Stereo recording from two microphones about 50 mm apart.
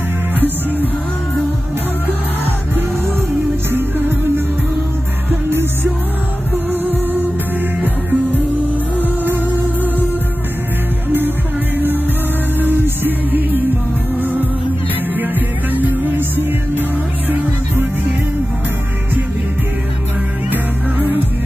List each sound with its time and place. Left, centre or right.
5.3 s music: right
11.1 s music: right
12.5 s music: right
15.1 s music: right
17.3 s music: right
20.4 s music: right